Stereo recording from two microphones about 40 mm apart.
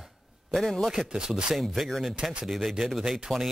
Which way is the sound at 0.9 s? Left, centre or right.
Centre.